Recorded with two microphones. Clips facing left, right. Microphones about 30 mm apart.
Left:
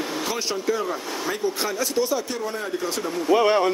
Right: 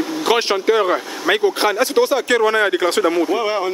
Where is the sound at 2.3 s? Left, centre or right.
Right.